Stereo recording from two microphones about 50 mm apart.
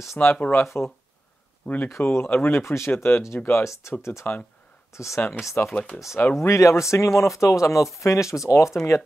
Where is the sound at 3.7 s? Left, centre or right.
Left.